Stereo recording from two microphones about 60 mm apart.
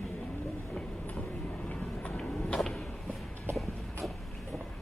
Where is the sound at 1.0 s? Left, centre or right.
Left.